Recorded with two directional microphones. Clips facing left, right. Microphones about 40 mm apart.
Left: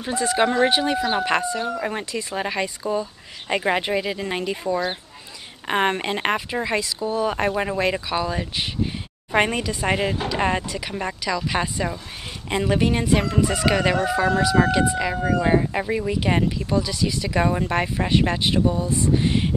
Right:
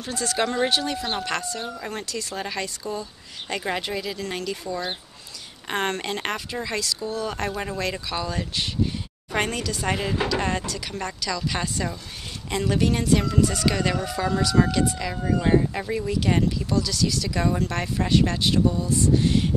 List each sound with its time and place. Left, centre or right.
0.0 s speech: left